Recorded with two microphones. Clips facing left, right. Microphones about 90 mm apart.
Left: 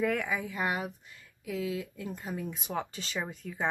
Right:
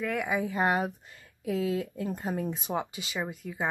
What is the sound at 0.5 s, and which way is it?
Speech, 35° right (ahead or behind).